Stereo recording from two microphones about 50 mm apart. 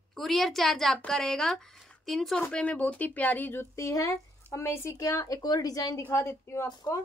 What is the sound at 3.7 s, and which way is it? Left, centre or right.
Speech, left.